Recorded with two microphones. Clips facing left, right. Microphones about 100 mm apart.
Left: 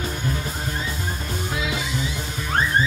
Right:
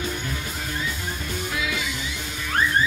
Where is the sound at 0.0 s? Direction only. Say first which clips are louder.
Left 2 dB; 30° left (ahead or behind).